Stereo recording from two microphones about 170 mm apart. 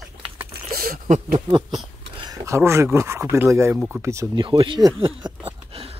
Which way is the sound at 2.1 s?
20° right (ahead or behind).